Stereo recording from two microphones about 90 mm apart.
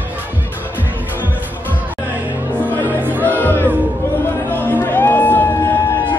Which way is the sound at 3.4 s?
25° left (ahead or behind).